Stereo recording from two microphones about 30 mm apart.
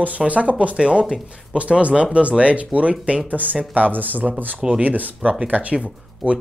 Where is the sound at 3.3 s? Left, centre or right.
Right.